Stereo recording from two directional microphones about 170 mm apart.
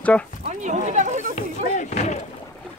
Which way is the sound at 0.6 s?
45° right (ahead or behind).